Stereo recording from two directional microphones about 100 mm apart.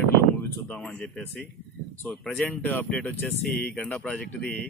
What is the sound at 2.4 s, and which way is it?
Speech, 20° left (ahead or behind).